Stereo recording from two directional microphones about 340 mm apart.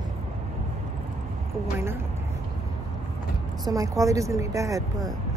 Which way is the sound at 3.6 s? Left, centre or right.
Centre.